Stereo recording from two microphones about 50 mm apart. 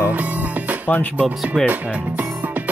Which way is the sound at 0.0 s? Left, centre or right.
Right.